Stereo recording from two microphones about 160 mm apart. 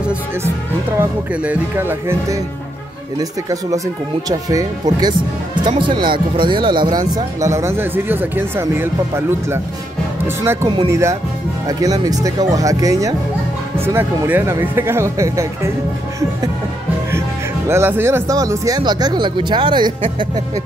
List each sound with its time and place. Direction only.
0.9 s speech: 10° right (ahead or behind)
17.6 s speech: 15° right (ahead or behind)